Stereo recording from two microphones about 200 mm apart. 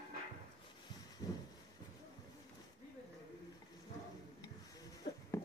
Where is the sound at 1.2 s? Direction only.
20° left (ahead or behind).